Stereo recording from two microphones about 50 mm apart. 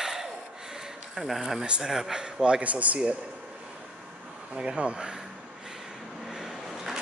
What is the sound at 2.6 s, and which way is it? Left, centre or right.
Speech, right.